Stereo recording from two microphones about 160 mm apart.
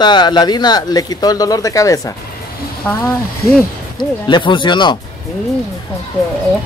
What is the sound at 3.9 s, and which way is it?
Speech, 30° left (ahead or behind).